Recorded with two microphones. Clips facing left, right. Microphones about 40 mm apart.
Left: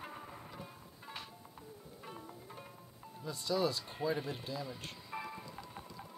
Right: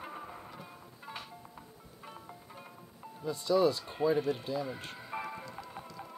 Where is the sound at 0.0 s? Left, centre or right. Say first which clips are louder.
Right 4 dB; centre.